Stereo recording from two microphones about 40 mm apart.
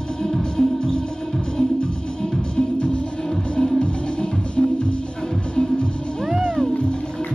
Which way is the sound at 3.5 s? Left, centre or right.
Left.